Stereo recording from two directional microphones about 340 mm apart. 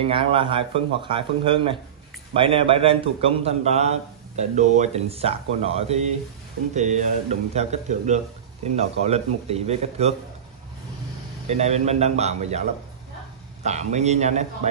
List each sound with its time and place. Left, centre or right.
0.0 s a man's voice: centre
11.4 s speech: centre
13.7 s speech: centre